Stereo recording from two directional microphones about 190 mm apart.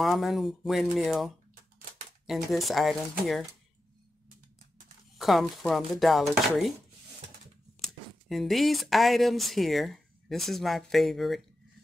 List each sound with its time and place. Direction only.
0.0 s speech: centre (ahead or behind)
5.1 s speech: centre (ahead or behind)
7.8 s speech: centre (ahead or behind)